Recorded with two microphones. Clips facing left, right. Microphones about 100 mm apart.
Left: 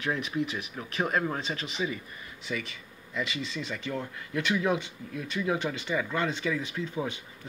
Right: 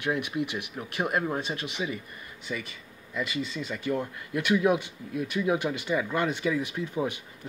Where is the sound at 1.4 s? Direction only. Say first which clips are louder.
Right 1 dB; 65° right (ahead or behind).